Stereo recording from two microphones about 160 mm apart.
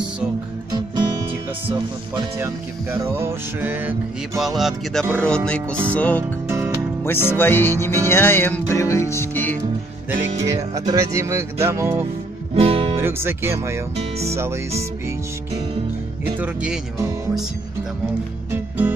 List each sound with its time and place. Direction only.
0.7 s music: 25° right (ahead or behind)
2.1 s music: 15° right (ahead or behind)
4.4 s speech: centre (ahead or behind)
5.1 s music: 5° left (ahead or behind)
10.1 s music: 20° right (ahead or behind)
12.5 s music: 35° right (ahead or behind)
12.9 s music: 15° right (ahead or behind)
16.3 s speech: 5° right (ahead or behind)
18.5 s music: 10° right (ahead or behind)